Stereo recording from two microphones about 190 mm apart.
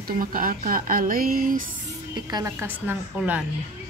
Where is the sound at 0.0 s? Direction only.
45° right (ahead or behind).